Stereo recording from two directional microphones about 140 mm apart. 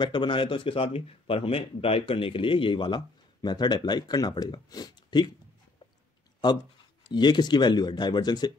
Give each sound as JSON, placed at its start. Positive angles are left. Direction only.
{"t": 0.0, "sound": "a man's voice", "side_deg": 35}
{"t": 7.1, "sound": "a man's voice", "side_deg": 30}